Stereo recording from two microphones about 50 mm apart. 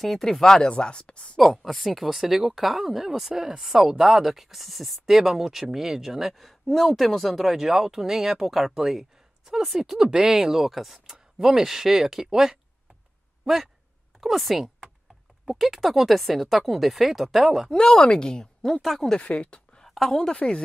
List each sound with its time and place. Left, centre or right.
0.0 s speech: centre; by 1.4 s left
1.4 s speech: centre
17.6 s speech: centre
18.8 s speech: centre
19.2 s a sound: left; by 20.2 s centre
20.2 s speech: centre